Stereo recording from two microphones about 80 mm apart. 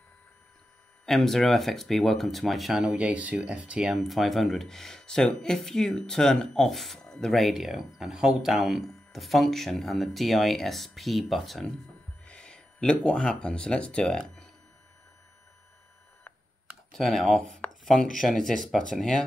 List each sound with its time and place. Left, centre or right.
1.0 s speech: centre
2.8 s speech: centre
3.9 s speech: centre
16.9 s speech: centre